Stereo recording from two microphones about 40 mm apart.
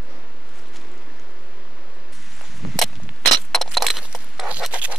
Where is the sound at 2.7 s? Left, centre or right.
Centre.